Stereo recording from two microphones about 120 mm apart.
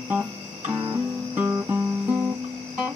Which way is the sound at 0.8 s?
15° right (ahead or behind).